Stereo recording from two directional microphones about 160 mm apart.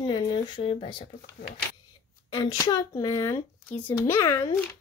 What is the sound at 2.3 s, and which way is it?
Speech, 25° left (ahead or behind).